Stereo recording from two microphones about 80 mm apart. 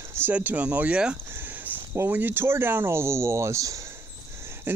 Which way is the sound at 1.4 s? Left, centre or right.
Right.